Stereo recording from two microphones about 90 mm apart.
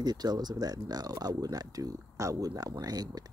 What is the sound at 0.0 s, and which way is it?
Speech, 50° right (ahead or behind).